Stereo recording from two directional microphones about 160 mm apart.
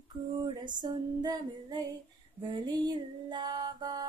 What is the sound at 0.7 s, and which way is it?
Female singing, 25° right (ahead or behind).